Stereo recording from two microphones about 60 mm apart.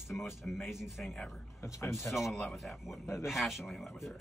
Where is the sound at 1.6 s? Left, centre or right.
Left.